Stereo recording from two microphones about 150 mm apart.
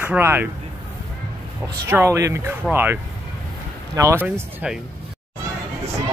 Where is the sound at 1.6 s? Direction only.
15° right (ahead or behind).